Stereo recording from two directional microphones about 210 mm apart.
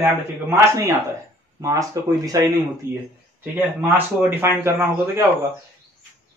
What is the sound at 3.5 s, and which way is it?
A man's voice, 10° right (ahead or behind).